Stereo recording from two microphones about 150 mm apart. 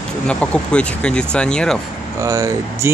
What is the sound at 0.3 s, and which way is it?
Speech, 10° left (ahead or behind).